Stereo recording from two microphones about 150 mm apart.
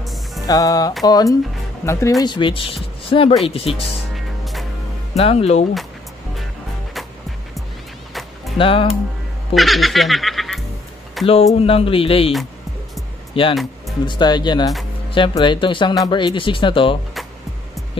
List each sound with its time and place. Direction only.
0.0 s music: centre (ahead or behind)
0.5 s speech: 25° left (ahead or behind)
2.2 s speech: 30° left (ahead or behind)
4.1 s music: centre (ahead or behind)
5.1 s speech: 40° left (ahead or behind)
8.1 s music: centre (ahead or behind)
8.5 s speech: 35° left (ahead or behind)
9.5 s music: centre (ahead or behind)
11.2 s speech: 40° left (ahead or behind)
13.3 s speech: 35° left (ahead or behind)